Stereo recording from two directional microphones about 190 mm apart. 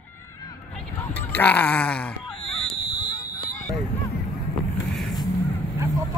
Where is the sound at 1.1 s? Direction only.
10° left (ahead or behind).